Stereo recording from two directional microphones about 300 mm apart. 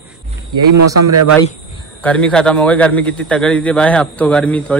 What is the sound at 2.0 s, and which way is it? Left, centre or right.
Speech, centre.